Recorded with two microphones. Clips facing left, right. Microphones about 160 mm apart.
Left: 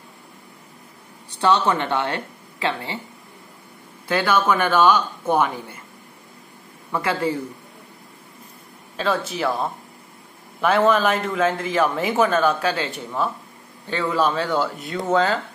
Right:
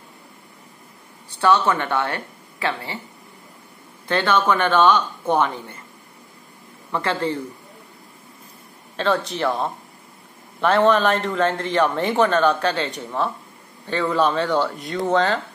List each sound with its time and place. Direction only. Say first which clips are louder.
1.4 s speech: right 1 dB; 20° left (ahead or behind)
4.1 s speech: even; 5° left (ahead or behind)
6.9 s speech: even; 10° left (ahead or behind)
8.9 s a man's voice: right 2 dB; 5° left (ahead or behind)